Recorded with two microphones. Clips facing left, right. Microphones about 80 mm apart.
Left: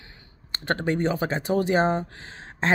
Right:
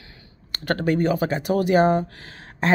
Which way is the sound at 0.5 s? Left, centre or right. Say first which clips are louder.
Right 3 dB; left.